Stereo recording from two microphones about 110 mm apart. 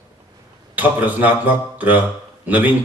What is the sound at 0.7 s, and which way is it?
A man's voice, 15° right (ahead or behind).